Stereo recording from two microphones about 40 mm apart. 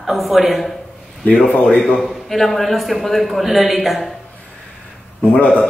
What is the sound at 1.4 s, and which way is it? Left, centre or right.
Speech, left.